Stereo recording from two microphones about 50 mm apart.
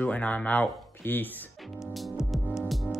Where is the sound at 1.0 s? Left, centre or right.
Left.